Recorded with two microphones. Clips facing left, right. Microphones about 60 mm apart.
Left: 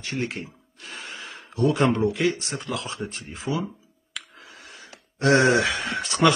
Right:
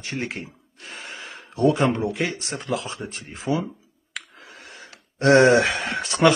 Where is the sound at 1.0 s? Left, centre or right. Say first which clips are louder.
Right 1 dB; right.